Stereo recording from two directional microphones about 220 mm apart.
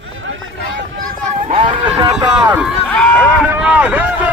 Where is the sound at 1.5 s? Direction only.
25° right (ahead or behind).